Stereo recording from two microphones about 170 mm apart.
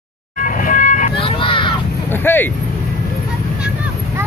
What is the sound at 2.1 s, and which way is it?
Speech, 10° left (ahead or behind).